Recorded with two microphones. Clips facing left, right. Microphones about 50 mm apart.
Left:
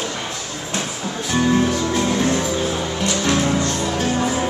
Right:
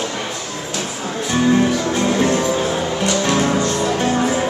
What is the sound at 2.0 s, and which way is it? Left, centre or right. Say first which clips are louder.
Music: right 4 dB; right.